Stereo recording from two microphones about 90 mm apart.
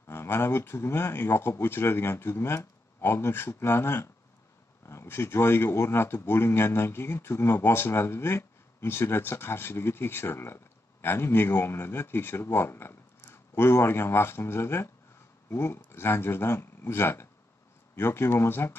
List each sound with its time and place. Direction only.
0.0 s speech: 25° left (ahead or behind)